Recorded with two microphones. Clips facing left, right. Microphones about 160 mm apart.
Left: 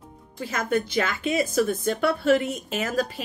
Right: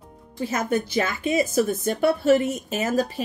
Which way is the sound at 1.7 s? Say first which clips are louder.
Even; centre (ahead or behind).